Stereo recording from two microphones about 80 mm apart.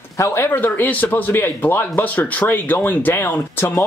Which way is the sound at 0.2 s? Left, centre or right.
Left.